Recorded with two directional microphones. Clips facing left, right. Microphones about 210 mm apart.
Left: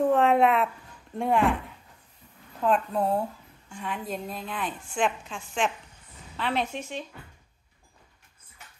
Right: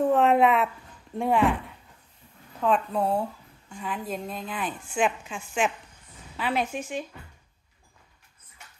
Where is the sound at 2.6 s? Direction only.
Centre (ahead or behind).